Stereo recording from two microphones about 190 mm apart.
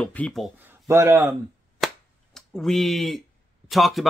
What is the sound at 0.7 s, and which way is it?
Speech, 15° right (ahead or behind).